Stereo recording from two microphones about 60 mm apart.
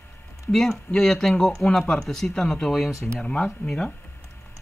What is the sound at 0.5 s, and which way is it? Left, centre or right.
Speech, centre.